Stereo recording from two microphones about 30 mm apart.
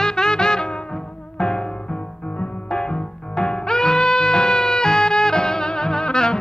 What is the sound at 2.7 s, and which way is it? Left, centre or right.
Music, left.